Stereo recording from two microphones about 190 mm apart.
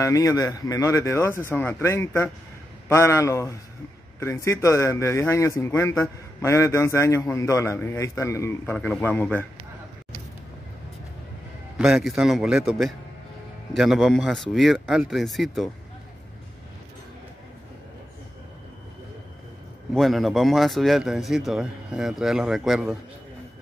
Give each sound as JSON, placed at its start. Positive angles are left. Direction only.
{"t": 0.0, "sound": "speech", "side_deg": 15}
{"t": 11.8, "sound": "a man's voice", "side_deg": 0}
{"t": 19.9, "sound": "a man's voice", "side_deg": 0}